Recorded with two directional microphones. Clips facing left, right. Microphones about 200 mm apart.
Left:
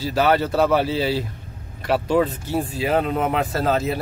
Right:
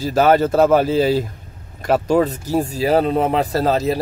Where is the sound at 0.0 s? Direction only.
45° right (ahead or behind).